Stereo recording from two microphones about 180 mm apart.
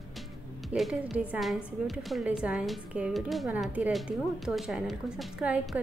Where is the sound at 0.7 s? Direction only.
5° right (ahead or behind).